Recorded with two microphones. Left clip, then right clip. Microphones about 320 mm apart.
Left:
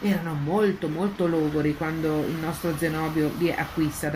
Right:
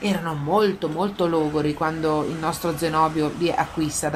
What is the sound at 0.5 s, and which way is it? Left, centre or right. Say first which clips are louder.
Speech: right 4 dB; right.